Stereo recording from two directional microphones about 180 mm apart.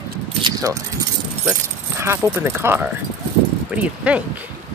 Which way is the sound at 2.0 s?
15° right (ahead or behind).